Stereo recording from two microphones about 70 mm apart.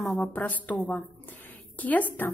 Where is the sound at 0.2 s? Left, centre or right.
Left.